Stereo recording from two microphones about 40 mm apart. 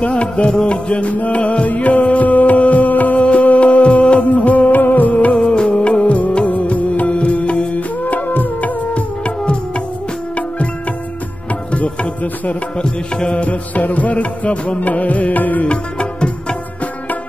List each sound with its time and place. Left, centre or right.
0.0 s music: left
5.1 s music: left
7.7 s music: left
11.7 s music: left
12.7 s music: left
15.6 s music: left